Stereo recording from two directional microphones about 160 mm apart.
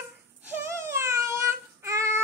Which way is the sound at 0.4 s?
15° right (ahead or behind).